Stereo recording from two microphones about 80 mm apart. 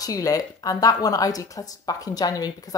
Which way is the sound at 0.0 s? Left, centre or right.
Left.